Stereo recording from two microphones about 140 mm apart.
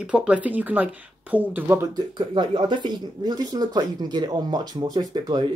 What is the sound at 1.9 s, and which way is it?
Speech, 35° right (ahead or behind).